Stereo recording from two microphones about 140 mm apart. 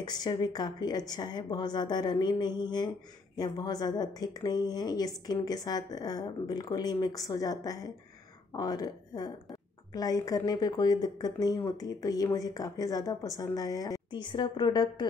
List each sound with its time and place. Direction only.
0.0 s speech: 30° left (ahead or behind)